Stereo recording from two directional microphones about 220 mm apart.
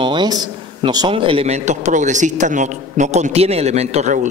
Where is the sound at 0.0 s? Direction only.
20° right (ahead or behind).